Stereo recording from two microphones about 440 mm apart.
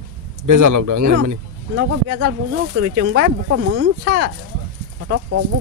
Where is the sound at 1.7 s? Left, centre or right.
Right.